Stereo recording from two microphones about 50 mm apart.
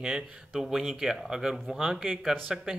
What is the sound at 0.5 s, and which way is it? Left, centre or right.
Speech, centre.